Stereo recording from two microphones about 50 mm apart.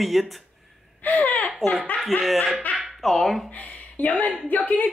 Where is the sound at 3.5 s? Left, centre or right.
Left.